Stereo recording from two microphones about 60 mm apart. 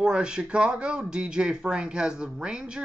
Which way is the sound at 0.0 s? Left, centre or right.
Centre.